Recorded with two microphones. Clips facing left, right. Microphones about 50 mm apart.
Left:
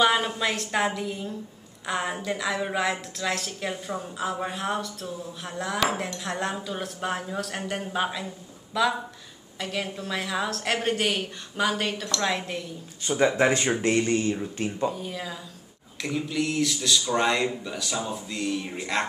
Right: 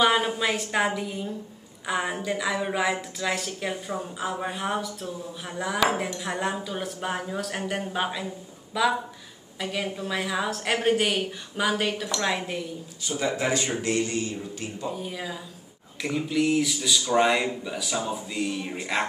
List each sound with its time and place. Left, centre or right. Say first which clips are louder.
0.0 s a woman's voice: even; centre
13.0 s speech: left 5 dB; left
14.9 s a woman's voice: even; centre